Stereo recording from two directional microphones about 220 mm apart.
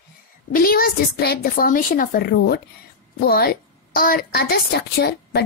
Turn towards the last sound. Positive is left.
turn(degrees=50)  # may be behind; listen again after turning